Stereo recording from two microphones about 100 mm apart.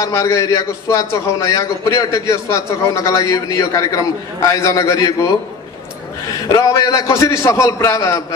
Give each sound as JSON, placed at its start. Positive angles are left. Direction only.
{"t": 0.0, "sound": "a man's voice", "side_deg": 30}
{"t": 6.5, "sound": "a man's voice", "side_deg": 35}